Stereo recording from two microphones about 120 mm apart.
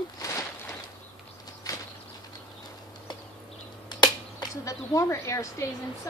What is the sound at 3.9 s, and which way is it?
Speech, 35° left (ahead or behind).